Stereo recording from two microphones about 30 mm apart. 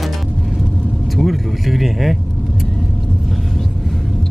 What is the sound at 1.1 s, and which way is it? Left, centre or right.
Vehicle, centre.